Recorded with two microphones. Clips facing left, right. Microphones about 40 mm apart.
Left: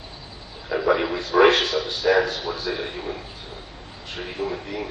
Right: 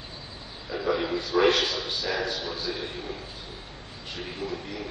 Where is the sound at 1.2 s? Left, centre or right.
Left.